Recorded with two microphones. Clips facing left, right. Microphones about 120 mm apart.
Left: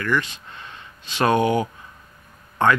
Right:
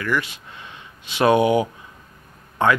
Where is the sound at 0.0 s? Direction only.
10° right (ahead or behind).